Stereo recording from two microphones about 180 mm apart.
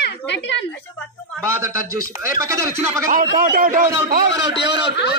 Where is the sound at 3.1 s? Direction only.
50° right (ahead or behind).